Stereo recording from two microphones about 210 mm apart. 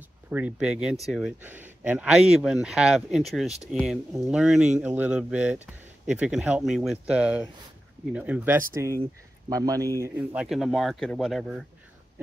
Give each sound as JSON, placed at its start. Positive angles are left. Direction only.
{"t": 0.3, "sound": "speech", "side_deg": -5}